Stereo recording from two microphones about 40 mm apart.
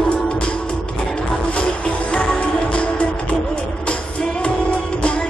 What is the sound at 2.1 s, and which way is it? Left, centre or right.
Music, left.